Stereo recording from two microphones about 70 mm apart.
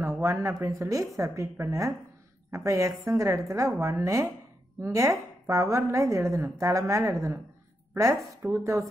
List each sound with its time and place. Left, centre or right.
0.0 s a woman's voice: right